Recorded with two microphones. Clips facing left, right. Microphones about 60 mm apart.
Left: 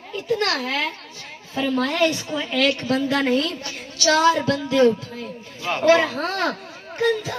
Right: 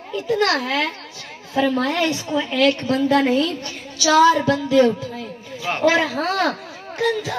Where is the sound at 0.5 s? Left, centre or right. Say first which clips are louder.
Right 3 dB; right.